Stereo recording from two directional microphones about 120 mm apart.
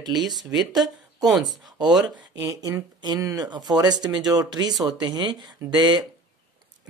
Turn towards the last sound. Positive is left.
turn(degrees=-35)  # may be behind; listen again after turning